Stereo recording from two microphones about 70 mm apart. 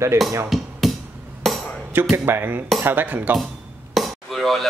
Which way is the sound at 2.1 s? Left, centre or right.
Right.